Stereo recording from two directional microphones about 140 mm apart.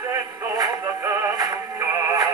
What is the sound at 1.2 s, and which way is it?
Synthetic singing, 30° right (ahead or behind).